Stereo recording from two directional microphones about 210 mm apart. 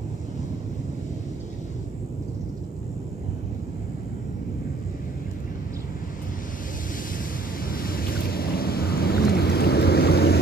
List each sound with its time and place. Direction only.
7.6 s boat: 45° left (ahead or behind)